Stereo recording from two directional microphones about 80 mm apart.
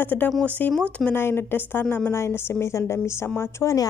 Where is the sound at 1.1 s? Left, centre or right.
Left.